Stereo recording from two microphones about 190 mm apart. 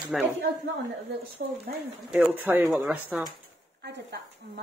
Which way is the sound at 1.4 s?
60° right (ahead or behind).